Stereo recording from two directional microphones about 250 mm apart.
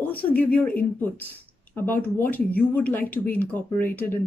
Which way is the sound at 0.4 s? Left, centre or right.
Centre.